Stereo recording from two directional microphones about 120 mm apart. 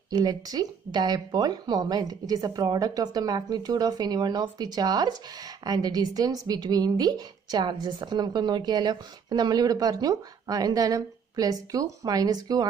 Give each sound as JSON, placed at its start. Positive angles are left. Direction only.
{"t": 0.1, "sound": "speech", "side_deg": -35}